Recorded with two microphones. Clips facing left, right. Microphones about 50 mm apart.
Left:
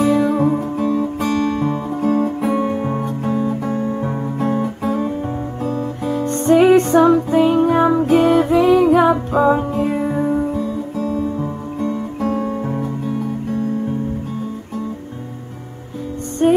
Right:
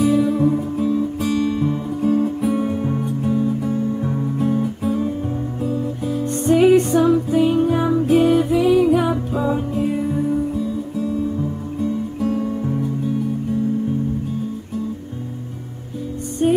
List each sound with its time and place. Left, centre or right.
0.0 s music: left
0.3 s music: left
0.6 s music: left
4.0 s music: left
4.5 s music: left
5.6 s guitar: left
6.4 s music: left
8.0 s music: left
8.8 s music: left
10.6 s guitar: left
12.2 s music: left
16.4 s music: left